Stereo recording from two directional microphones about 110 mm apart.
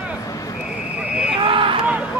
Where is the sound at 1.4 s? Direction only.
50° right (ahead or behind).